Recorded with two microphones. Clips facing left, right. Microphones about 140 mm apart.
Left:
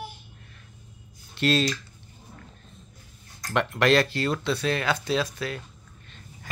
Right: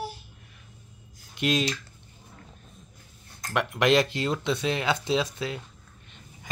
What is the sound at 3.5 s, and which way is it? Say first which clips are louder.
Speech: left 1 dB; 10° right (ahead or behind).